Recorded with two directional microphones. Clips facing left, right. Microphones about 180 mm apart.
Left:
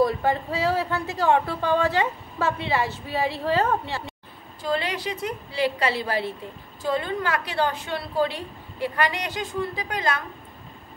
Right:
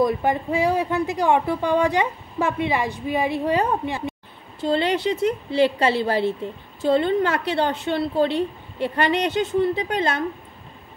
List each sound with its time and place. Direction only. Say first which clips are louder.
0.0 s speech: right 1 dB; 15° right (ahead or behind)
4.6 s a woman's voice: right 6 dB; 25° right (ahead or behind)